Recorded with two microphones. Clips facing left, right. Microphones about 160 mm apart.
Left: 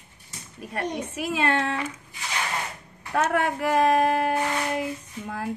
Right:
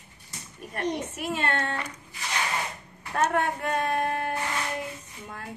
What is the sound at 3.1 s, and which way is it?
Speech, 90° left.